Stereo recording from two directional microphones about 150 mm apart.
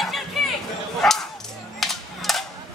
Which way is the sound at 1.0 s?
Centre (ahead or behind).